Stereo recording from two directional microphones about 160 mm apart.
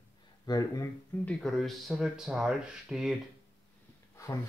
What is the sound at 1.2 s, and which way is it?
Speech, 5° left (ahead or behind).